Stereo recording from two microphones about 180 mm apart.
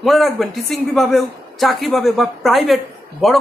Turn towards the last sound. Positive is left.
turn(degrees=0)  # may be behind; listen again after turning